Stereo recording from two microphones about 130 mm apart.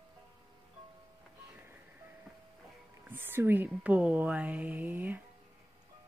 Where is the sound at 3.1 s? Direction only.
15° right (ahead or behind).